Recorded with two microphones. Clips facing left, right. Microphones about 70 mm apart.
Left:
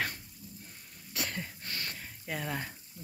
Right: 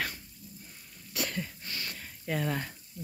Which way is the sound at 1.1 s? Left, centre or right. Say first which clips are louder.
Right 3 dB; left.